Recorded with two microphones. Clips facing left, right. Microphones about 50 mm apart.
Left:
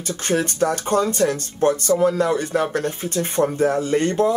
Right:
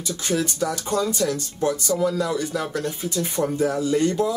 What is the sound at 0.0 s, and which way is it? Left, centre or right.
Speech, left.